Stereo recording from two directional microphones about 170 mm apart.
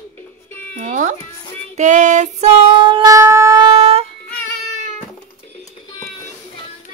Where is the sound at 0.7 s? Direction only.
45° right (ahead or behind).